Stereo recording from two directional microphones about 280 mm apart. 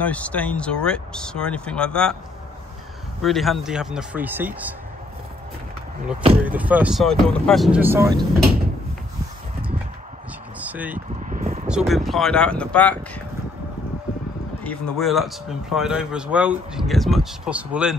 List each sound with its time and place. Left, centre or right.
0.0 s speech: centre
3.2 s speech: centre
6.4 s speech: centre
10.6 s vehicle: centre
11.2 s a sound: right
11.6 s speech: centre
14.6 s speech: centre